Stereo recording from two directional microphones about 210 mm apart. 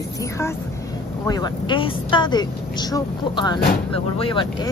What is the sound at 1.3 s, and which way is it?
Speech, 20° left (ahead or behind).